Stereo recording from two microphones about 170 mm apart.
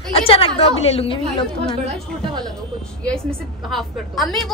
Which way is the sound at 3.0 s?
5° left (ahead or behind).